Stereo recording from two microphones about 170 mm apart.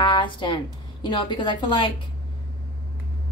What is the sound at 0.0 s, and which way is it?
A woman's voice, 30° left (ahead or behind).